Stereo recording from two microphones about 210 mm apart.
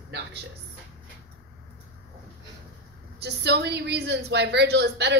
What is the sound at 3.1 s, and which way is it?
A woman's voice, 50° right (ahead or behind).